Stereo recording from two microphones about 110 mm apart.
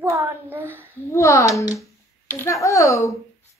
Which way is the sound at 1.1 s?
30° left (ahead or behind).